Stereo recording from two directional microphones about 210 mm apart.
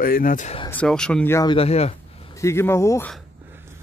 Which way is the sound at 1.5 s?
30° left (ahead or behind).